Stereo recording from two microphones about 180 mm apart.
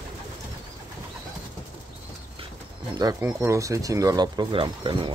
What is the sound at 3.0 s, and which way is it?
Speech, 20° right (ahead or behind).